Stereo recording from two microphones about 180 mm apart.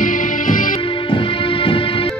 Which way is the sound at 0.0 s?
50° left (ahead or behind).